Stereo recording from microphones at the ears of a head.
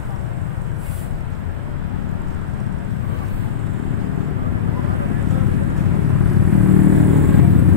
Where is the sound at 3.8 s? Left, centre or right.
Left.